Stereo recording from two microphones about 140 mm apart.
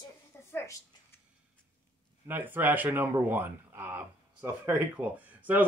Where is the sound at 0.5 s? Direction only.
15° left (ahead or behind).